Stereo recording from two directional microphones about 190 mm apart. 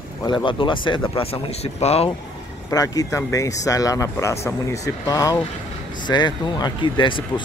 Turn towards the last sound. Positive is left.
turn(degrees=25)  # may be behind; listen again after turning